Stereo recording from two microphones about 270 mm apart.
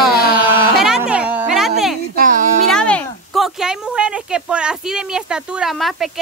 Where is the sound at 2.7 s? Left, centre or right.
Centre.